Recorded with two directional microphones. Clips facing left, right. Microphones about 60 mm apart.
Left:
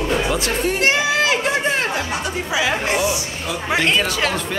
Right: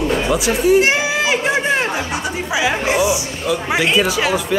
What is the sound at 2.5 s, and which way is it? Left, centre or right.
Music, centre.